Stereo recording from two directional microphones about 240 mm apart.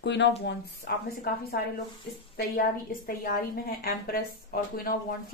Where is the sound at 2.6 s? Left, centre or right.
Left.